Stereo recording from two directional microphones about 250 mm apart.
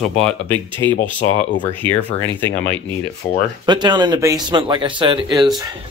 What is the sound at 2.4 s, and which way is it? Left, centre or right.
Speech, centre.